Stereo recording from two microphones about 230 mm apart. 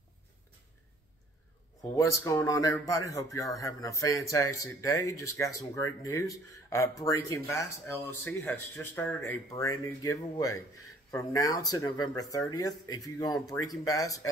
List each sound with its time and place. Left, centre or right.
1.8 s speech: centre